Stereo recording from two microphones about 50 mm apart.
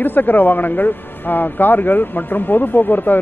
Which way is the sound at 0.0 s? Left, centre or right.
Left.